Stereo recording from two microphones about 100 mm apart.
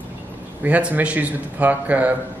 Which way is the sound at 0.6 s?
15° right (ahead or behind).